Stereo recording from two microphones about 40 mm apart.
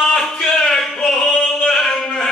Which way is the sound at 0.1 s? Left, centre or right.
Centre.